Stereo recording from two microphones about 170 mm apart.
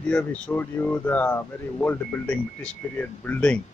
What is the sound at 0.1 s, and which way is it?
Speech, 10° left (ahead or behind).